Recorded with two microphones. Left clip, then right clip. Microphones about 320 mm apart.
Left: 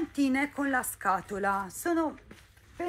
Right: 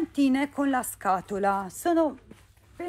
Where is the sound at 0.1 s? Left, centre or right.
Right.